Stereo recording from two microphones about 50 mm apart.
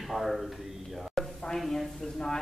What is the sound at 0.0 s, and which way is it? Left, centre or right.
A man's voice, centre.